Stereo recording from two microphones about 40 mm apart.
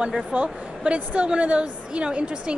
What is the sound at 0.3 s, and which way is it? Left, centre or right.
A woman's voice, right.